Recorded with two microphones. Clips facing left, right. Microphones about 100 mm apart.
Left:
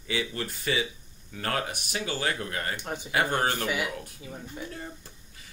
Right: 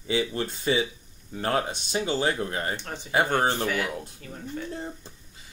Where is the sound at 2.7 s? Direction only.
15° left (ahead or behind).